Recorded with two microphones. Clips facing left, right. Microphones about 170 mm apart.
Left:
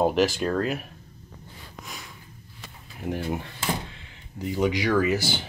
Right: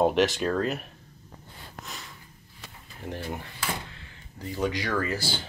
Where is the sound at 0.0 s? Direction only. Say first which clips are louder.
Left 1 dB; centre (ahead or behind).